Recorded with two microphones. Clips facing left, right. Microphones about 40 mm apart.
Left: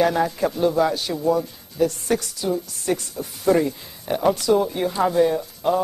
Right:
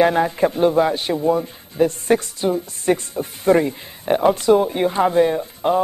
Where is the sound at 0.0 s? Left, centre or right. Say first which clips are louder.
Right 4 dB; right.